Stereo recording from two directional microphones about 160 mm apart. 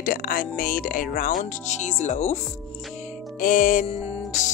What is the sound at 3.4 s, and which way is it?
Speech, 60° left (ahead or behind).